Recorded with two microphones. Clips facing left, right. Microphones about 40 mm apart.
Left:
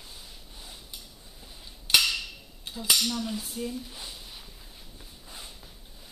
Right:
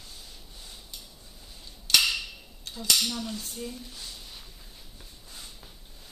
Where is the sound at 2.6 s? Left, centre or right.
Centre.